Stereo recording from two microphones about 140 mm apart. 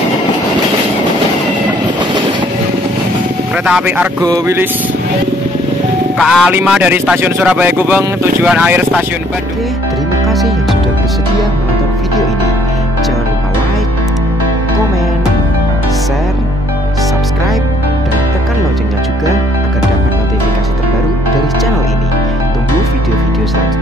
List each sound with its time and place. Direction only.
3.6 s speech: 10° right (ahead or behind)
4.2 s speech: 30° right (ahead or behind)
6.1 s speech: centre (ahead or behind)
6.5 s speech: 10° right (ahead or behind)